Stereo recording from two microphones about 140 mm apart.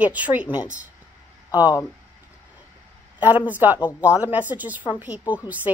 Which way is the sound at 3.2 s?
10° right (ahead or behind).